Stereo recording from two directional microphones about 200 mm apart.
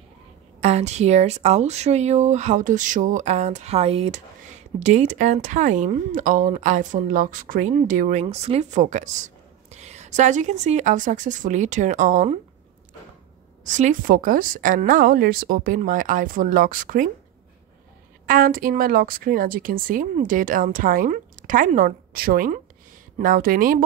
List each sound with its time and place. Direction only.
0.6 s speech: 35° right (ahead or behind)
13.7 s a woman's voice: 40° right (ahead or behind)
18.2 s a woman's voice: 45° right (ahead or behind)